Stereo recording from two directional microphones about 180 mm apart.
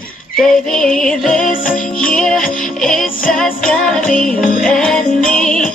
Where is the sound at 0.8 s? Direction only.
5° left (ahead or behind).